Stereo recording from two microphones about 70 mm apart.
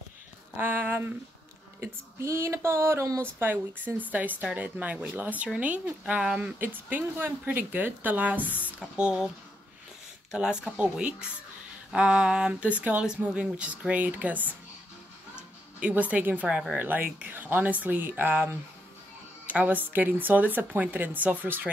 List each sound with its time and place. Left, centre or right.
0.6 s a sound: right
1.8 s a sound: right
3.2 s speech: right; by 6.5 s centre
6.6 s speech: right
10.3 s speech: centre
15.8 s speech: right